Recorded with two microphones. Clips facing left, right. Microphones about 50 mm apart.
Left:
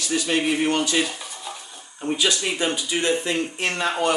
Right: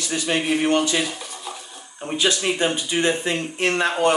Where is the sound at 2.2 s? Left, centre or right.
Centre.